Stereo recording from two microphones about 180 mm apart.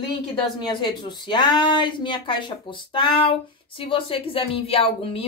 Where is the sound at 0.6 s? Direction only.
25° left (ahead or behind).